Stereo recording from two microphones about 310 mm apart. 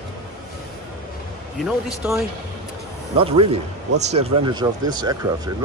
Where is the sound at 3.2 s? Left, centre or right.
Centre.